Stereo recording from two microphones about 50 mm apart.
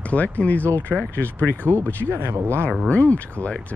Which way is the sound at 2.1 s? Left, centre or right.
Right.